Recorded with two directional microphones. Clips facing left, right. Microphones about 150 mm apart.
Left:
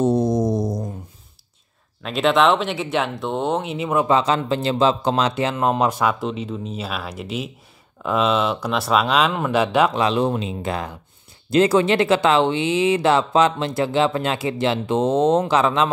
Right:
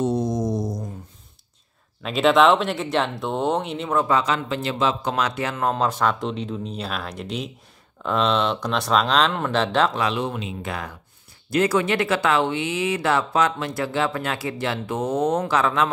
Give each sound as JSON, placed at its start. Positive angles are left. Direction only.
{"t": 0.0, "sound": "a sound", "side_deg": 60}
{"t": 2.0, "sound": "speech", "side_deg": 0}
{"t": 4.0, "sound": "speech", "side_deg": 25}
{"t": 9.9, "sound": "a man's voice", "side_deg": 30}